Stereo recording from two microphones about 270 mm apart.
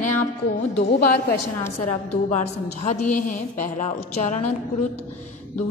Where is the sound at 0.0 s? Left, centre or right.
Left.